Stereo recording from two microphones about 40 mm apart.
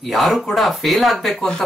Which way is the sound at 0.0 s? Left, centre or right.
Centre.